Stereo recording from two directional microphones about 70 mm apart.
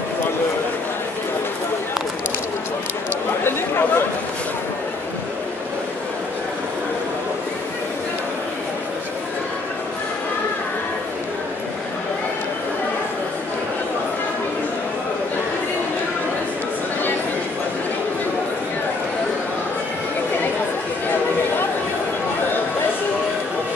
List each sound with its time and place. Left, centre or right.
3.4 s chatter: left